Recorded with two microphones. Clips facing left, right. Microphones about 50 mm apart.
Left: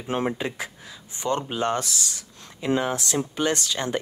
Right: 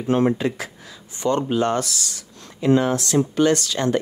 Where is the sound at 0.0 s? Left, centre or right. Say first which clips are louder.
Right 7 dB; centre.